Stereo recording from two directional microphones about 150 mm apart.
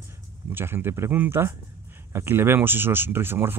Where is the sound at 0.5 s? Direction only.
15° right (ahead or behind).